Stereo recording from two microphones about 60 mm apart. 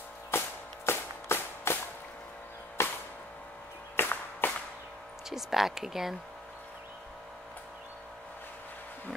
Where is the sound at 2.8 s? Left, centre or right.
Left.